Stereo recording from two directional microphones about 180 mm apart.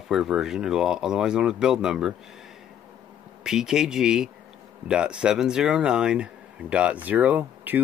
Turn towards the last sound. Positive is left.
turn(degrees=-10)  # may be behind; listen again after turning